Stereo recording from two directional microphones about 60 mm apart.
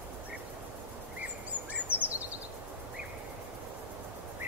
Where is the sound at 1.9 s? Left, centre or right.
Right.